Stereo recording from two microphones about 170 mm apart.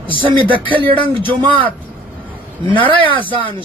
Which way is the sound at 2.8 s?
30° right (ahead or behind).